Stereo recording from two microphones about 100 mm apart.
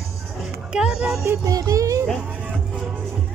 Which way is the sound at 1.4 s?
35° right (ahead or behind).